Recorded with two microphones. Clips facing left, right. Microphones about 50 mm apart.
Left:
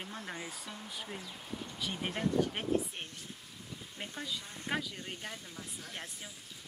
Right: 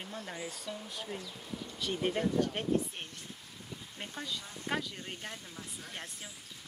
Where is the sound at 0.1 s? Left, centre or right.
Centre.